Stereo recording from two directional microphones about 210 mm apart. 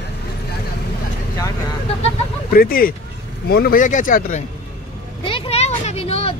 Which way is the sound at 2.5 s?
45° left (ahead or behind).